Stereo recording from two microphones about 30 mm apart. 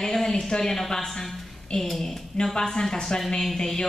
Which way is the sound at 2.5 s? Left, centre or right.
Left.